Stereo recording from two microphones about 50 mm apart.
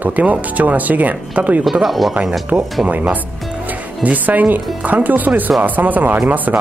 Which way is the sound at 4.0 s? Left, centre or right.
Right.